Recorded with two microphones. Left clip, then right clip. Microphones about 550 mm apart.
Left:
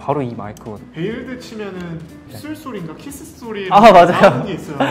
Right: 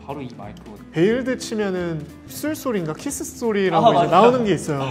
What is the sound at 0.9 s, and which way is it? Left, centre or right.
Speech, right.